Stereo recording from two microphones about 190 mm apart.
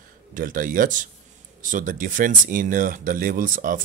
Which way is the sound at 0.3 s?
45° right (ahead or behind).